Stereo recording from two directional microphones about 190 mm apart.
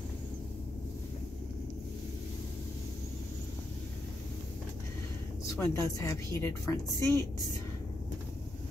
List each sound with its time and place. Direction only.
5.7 s a woman's voice: 15° left (ahead or behind)